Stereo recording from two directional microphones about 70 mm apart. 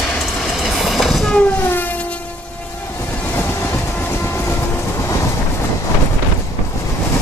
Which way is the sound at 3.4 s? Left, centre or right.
Left.